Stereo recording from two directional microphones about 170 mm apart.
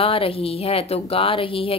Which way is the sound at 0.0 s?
35° left (ahead or behind).